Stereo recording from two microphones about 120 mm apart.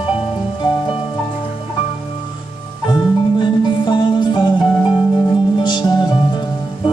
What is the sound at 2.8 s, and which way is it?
Music, 40° left (ahead or behind).